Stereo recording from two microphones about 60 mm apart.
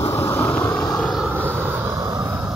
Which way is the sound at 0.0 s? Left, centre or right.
Left.